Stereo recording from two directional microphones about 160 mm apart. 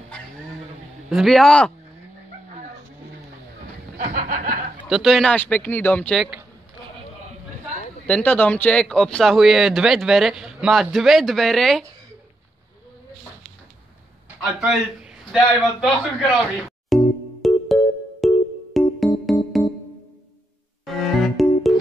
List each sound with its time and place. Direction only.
1.1 s speech: centre (ahead or behind)
4.0 s speech: 55° right (ahead or behind)
4.8 s speech: centre (ahead or behind)
8.1 s speech: 10° left (ahead or behind)
14.4 s speech: centre (ahead or behind)
16.9 s music: centre (ahead or behind)
20.8 s music: centre (ahead or behind)